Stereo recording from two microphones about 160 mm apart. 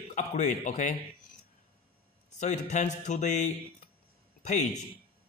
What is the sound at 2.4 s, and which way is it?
A man's voice, 45° left (ahead or behind).